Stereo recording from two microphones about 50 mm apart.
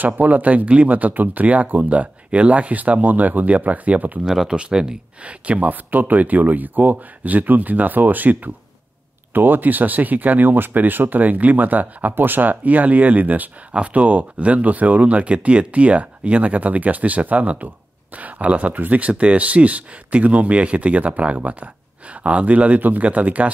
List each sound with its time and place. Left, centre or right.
0.0 s speech: right
4.2 s speech: centre; by 23.5 s right